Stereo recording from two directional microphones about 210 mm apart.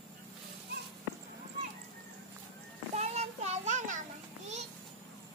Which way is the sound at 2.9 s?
30° right (ahead or behind).